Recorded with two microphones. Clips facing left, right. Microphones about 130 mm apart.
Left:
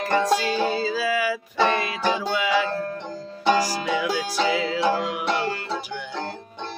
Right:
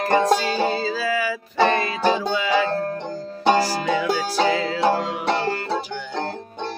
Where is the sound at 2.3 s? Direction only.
10° left (ahead or behind).